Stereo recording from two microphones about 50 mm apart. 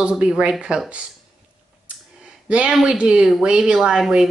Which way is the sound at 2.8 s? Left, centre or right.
Centre.